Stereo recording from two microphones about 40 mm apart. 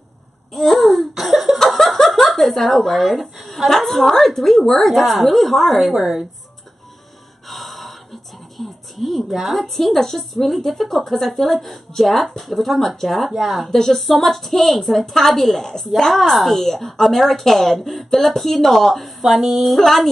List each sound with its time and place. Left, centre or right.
0.5 s laughter: centre
5.9 s speech: centre
7.4 s speech: centre
13.7 s a woman's voice: centre